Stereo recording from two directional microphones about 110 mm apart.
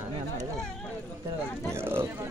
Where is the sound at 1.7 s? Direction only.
20° right (ahead or behind).